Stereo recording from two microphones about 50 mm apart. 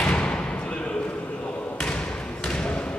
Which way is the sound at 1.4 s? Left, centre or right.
Left.